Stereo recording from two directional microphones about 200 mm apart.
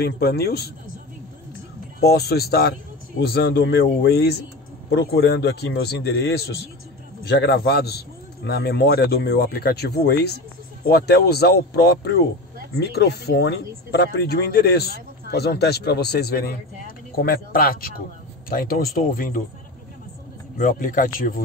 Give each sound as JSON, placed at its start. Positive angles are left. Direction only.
{"t": 0.0, "sound": "speech", "side_deg": 50}
{"t": 2.0, "sound": "a man's voice", "side_deg": 55}
{"t": 20.5, "sound": "speech", "side_deg": 40}